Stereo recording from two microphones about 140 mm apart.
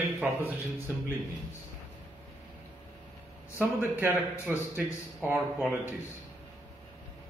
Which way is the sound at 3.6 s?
15° right (ahead or behind).